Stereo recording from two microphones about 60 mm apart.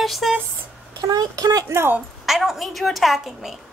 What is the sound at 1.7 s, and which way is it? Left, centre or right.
Speech, right.